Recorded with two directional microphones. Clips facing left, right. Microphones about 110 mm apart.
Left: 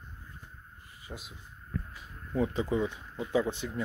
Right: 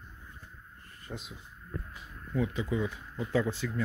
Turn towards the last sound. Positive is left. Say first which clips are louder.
# even
turn(degrees=20)  # may be behind; listen again after turning